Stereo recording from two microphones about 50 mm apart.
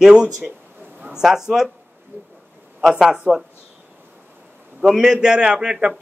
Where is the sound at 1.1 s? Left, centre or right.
Centre.